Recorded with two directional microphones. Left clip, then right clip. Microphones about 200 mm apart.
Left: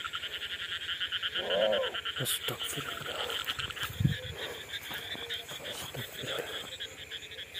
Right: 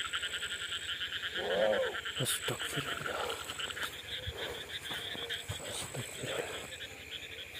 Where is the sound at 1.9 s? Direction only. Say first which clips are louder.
Left 3 dB; 25° left (ahead or behind).